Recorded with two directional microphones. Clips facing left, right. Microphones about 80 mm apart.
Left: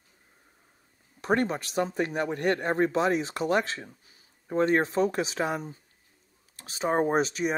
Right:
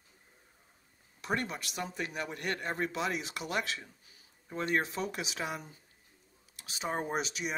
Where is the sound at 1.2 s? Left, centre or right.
Left.